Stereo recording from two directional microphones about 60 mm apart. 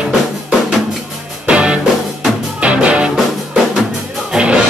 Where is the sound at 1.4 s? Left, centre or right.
Centre.